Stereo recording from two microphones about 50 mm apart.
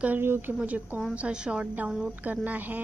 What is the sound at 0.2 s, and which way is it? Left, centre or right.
Speech, right.